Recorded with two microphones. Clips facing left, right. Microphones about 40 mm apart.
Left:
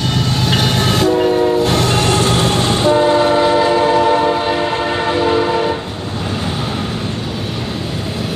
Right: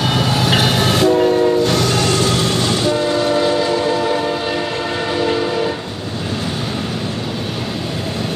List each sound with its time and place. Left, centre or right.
0.0 s train: centre
1.6 s train: centre